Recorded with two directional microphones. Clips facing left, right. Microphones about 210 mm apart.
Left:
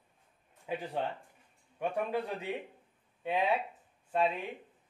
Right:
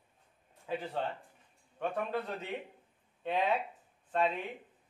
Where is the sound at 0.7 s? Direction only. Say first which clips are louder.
Left 1 dB; 15° left (ahead or behind).